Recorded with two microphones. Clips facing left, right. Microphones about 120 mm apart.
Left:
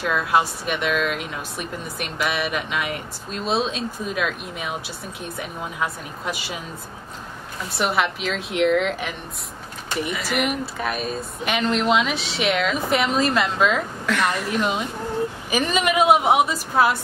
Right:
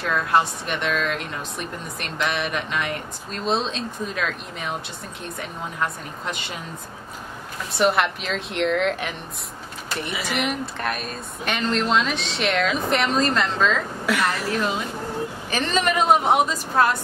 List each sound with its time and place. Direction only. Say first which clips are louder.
0.0 s speech: even; 5° left (ahead or behind)
7.7 s speech: right 2 dB; centre (ahead or behind)
14.0 s a woman's voice: even; 5° right (ahead or behind)
14.5 s a woman's voice: left 1 dB; 15° left (ahead or behind)